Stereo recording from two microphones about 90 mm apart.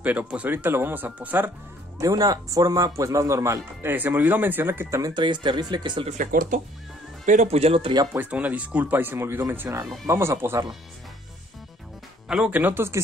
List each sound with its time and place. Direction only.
0.0 s speech: 15° right (ahead or behind)
2.0 s speech: 40° right (ahead or behind)
3.8 s speech: 20° right (ahead or behind)
5.1 s speech: 60° right (ahead or behind)
7.5 s speech: 90° right
8.1 s speech: 20° right (ahead or behind)
12.3 s speech: 10° right (ahead or behind)
12.5 s speech: 20° right (ahead or behind)